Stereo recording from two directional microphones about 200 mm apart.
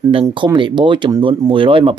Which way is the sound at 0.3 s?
25° right (ahead or behind).